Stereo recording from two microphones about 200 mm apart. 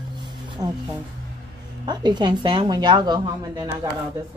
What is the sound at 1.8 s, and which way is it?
A woman's voice, 20° right (ahead or behind).